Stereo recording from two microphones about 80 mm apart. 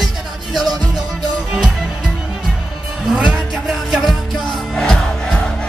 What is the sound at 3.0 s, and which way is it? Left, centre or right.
Music, centre.